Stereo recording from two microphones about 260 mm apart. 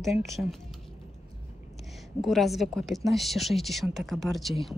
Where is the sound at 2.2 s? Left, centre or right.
Centre.